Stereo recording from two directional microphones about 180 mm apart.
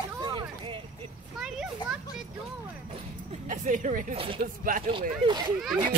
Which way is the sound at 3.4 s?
45° right (ahead or behind).